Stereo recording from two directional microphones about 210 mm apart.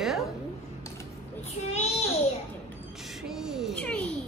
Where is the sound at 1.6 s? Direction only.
30° left (ahead or behind).